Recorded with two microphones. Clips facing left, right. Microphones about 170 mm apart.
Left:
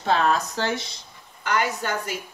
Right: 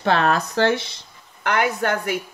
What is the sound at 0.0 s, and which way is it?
Speech, 65° right (ahead or behind).